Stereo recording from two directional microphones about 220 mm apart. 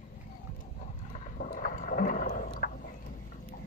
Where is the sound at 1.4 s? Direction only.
40° left (ahead or behind).